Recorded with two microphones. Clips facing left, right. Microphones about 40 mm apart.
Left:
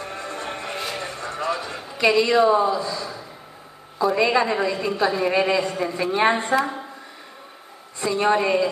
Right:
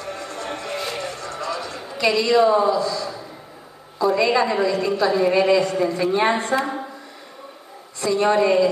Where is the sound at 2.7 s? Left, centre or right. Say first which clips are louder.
Right 3 dB; centre.